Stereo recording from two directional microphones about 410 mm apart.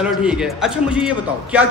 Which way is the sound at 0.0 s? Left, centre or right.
Centre.